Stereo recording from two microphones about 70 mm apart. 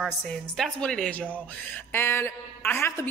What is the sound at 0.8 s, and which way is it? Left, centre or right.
Speech, centre.